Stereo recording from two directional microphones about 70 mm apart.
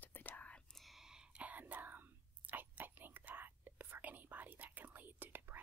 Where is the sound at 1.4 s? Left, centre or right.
Right.